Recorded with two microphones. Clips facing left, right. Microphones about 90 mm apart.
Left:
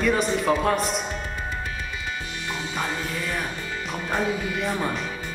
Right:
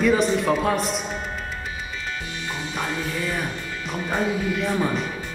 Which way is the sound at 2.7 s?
Centre (ahead or behind).